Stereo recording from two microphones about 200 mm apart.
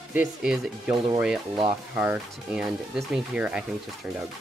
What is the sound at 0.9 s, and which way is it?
Speech, 25° right (ahead or behind).